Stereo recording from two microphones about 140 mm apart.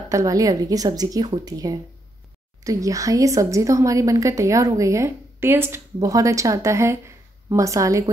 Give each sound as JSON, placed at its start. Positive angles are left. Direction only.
{"t": 0.1, "sound": "a woman's voice", "side_deg": -25}